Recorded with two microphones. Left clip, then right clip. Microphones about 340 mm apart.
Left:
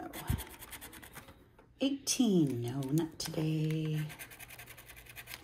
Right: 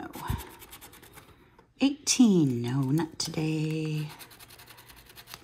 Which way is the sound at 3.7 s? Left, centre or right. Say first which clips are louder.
Right 5 dB; right.